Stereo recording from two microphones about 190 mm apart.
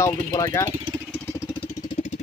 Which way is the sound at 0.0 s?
15° left (ahead or behind).